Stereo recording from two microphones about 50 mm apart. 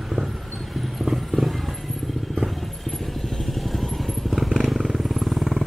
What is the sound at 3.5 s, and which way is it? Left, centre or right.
Vehicle, centre.